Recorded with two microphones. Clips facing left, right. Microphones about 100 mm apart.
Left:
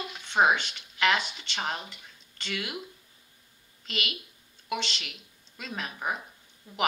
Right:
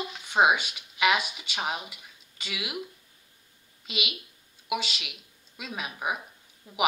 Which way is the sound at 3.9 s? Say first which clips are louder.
Even; 10° right (ahead or behind).